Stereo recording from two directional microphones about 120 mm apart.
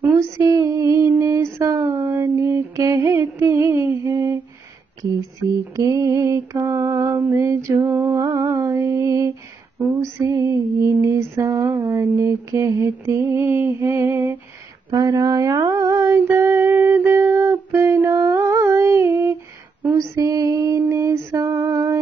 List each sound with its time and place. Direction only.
0.5 s a sound: 30° right (ahead or behind)
5.4 s mantra: 25° right (ahead or behind)
9.8 s female singing: 20° right (ahead or behind)
14.9 s music: 25° right (ahead or behind)
19.8 s female singing: 25° right (ahead or behind)